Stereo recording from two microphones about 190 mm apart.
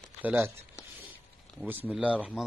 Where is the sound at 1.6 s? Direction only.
10° right (ahead or behind).